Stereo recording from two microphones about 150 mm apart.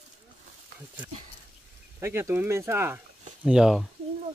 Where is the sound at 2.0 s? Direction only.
15° right (ahead or behind).